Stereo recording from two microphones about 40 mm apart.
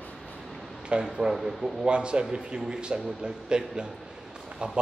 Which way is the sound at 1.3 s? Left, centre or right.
Centre.